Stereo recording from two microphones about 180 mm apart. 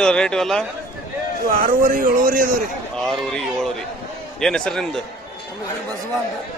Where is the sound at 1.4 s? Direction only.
50° right (ahead or behind).